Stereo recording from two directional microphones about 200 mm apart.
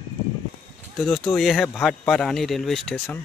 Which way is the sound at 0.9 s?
Centre (ahead or behind).